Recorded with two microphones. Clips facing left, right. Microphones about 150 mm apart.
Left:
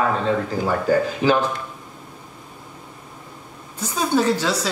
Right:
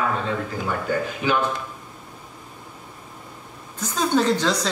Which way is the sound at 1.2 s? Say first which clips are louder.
Left 4 dB; 35° left (ahead or behind).